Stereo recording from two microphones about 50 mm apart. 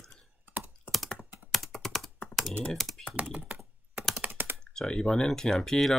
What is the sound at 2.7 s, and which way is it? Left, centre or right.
Speech, centre.